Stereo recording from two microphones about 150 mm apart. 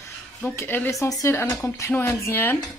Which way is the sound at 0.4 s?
15° left (ahead or behind).